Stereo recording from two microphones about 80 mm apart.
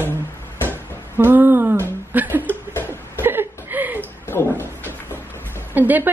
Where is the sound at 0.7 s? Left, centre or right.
Right.